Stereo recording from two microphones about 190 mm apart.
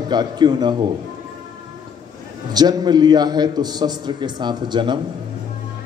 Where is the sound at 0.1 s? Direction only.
20° right (ahead or behind).